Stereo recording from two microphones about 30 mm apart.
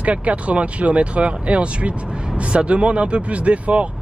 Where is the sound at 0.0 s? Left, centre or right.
Right.